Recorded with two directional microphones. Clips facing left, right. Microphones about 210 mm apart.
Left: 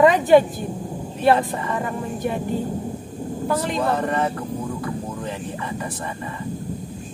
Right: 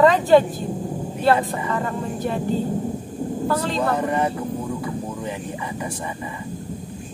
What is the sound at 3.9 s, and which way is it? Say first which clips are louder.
Speech: right 1 dB; 10° right (ahead or behind).